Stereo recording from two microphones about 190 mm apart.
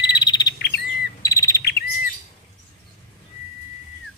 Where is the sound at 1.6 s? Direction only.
55° left (ahead or behind).